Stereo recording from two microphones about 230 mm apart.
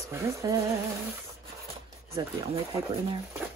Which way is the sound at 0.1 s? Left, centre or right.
Centre.